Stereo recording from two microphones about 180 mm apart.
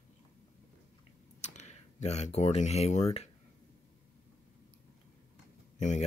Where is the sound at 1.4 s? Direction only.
40° left (ahead or behind).